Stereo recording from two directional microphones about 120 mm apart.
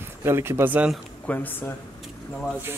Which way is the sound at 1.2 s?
15° left (ahead or behind).